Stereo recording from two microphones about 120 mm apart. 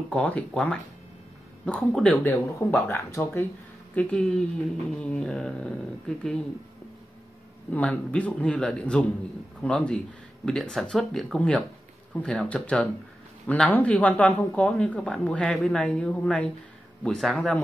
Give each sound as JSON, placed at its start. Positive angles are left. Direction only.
{"t": 0.1, "sound": "speech", "side_deg": 10}
{"t": 2.2, "sound": "speech", "side_deg": 20}
{"t": 3.9, "sound": "speech", "side_deg": 10}
{"t": 7.7, "sound": "speech", "side_deg": 10}